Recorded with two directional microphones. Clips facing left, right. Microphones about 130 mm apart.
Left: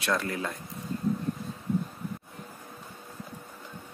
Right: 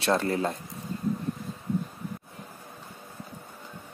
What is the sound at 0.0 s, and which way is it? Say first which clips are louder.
Speech: right 5 dB; 30° right (ahead or behind).